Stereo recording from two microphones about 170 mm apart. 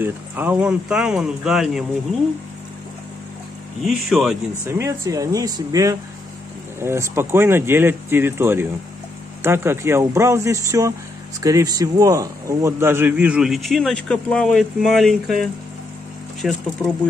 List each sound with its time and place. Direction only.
0.0 s a man's voice: 10° right (ahead or behind)
3.8 s a man's voice: centre (ahead or behind)
4.6 s a man's voice: 15° right (ahead or behind)